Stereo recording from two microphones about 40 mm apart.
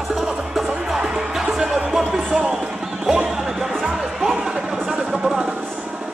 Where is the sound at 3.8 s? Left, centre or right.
Centre.